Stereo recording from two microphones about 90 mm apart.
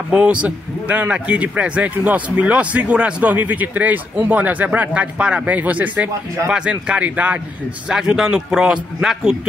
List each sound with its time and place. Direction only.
0.1 s speech: 15° right (ahead or behind)